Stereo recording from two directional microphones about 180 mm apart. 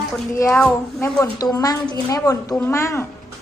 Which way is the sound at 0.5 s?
5° left (ahead or behind).